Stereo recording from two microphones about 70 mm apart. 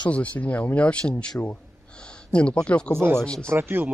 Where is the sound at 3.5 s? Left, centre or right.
Right.